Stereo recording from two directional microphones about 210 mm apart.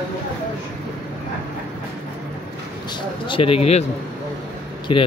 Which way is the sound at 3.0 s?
25° left (ahead or behind).